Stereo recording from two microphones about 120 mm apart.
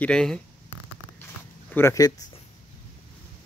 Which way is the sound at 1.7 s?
25° left (ahead or behind).